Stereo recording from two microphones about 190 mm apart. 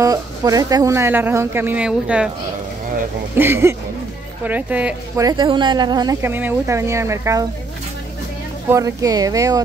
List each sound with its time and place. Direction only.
0.0 s speech: 20° right (ahead or behind)
3.3 s speech: 10° right (ahead or behind)
5.2 s speech: 25° right (ahead or behind)
8.7 s speech: 20° right (ahead or behind)